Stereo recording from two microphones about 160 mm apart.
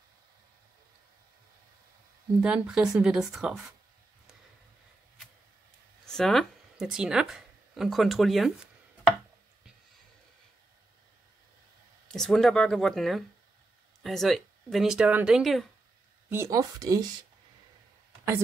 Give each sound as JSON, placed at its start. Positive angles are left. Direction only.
{"t": 2.4, "sound": "speech", "side_deg": -5}
{"t": 6.0, "sound": "speech", "side_deg": 5}
{"t": 12.1, "sound": "speech", "side_deg": 0}
{"t": 16.3, "sound": "speech", "side_deg": -15}